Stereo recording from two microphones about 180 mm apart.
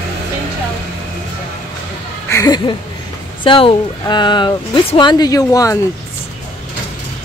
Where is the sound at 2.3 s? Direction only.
20° left (ahead or behind).